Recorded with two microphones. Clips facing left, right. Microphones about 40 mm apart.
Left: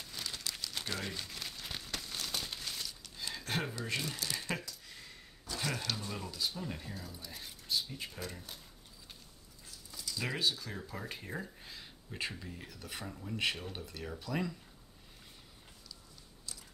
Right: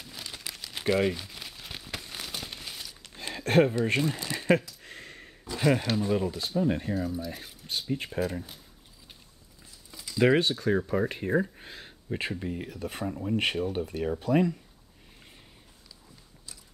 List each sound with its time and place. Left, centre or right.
0.0 s crumpling: centre
2.2 s a sound: centre
3.0 s speech: right
4.8 s a sound: right
5.4 s speech: right
6.9 s speech: centre
7.6 s speech: right
8.2 s speech: right
9.8 s a sound: right
10.2 s speech: right